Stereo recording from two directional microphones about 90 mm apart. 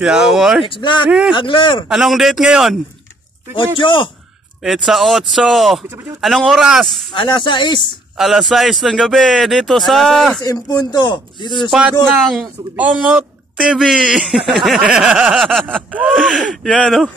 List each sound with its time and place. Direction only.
0.0 s speech: 5° right (ahead or behind)
0.7 s speech: 60° left (ahead or behind)
1.9 s speech: 5° right (ahead or behind)
3.5 s speech: 65° left (ahead or behind)
4.6 s speech: 5° right (ahead or behind)
7.1 s speech: 60° left (ahead or behind)
8.2 s speech: 5° right (ahead or behind)
10.4 s speech: 40° left (ahead or behind); by 11.7 s 55° left (ahead or behind)
12.7 s speech: 15° right (ahead or behind)
13.6 s speech: 5° right (ahead or behind)
15.4 s speech: 5° left (ahead or behind)